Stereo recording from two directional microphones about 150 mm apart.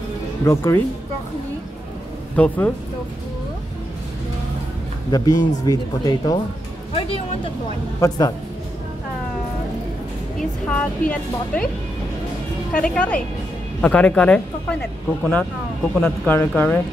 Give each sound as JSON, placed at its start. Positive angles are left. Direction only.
{"t": 0.5, "sound": "speech", "side_deg": 15}
{"t": 2.3, "sound": "speech", "side_deg": 10}
{"t": 5.1, "sound": "speech", "side_deg": 25}
{"t": 6.9, "sound": "a sound", "side_deg": 40}
{"t": 8.0, "sound": "speech", "side_deg": 20}
{"t": 10.7, "sound": "speech", "side_deg": 10}
{"t": 12.7, "sound": "speech", "side_deg": 10}